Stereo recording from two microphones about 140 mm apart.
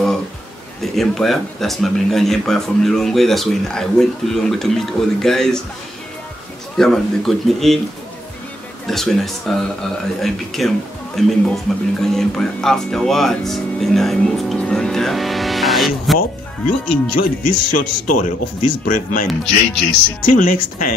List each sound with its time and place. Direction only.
0.9 s speech: centre (ahead or behind)
6.8 s speech: centre (ahead or behind)
8.8 s speech: 5° left (ahead or behind)
16.2 s speech: 85° left
20.2 s speech: 85° left